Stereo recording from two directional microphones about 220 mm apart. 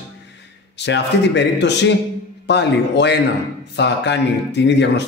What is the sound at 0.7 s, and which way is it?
A man's voice, 50° left (ahead or behind).